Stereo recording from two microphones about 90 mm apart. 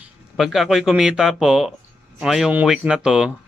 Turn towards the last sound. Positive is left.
turn(degrees=-10)  # may be behind; listen again after turning